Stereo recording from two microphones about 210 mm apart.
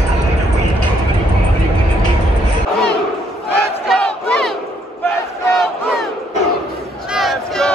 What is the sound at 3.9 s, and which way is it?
Crowd, 5° left (ahead or behind).